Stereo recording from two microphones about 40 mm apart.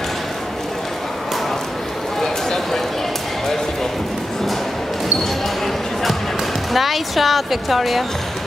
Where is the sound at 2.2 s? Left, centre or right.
Centre.